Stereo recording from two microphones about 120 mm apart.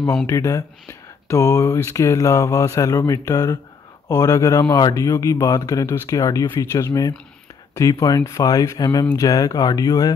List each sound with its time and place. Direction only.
0.3 s speech: 25° left (ahead or behind)